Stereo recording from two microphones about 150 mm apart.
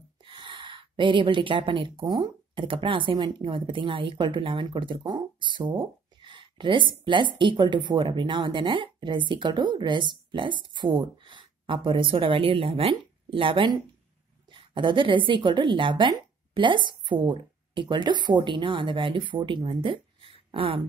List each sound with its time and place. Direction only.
0.2 s a woman's voice: 35° right (ahead or behind)